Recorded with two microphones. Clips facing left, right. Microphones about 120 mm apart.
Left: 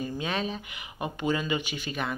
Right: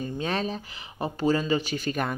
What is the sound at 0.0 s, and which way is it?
Speech, 40° right (ahead or behind).